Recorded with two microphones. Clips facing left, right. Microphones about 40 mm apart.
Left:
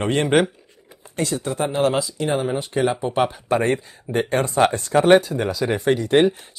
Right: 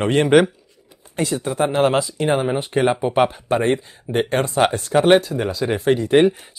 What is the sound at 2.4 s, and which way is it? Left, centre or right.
Speech, right.